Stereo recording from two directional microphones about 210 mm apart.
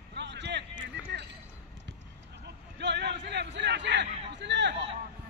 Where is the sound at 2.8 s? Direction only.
55° right (ahead or behind).